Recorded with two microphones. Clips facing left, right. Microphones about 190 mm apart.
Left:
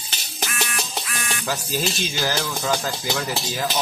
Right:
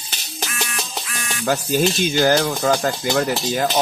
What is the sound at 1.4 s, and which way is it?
Speech, 60° right (ahead or behind).